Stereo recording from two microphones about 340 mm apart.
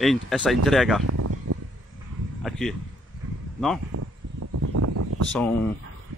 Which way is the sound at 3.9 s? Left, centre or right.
Right.